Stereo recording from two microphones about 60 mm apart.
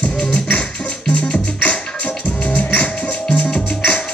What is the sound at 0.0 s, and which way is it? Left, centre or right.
Music, centre.